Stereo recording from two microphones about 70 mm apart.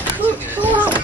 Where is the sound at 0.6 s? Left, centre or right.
Right.